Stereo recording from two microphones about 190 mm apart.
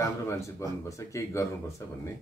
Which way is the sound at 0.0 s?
15° left (ahead or behind).